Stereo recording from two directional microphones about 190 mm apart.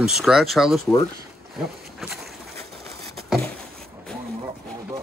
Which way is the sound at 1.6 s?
Centre (ahead or behind).